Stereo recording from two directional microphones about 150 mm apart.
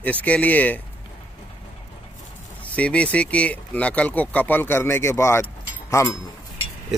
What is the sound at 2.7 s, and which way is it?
Speech, 10° left (ahead or behind).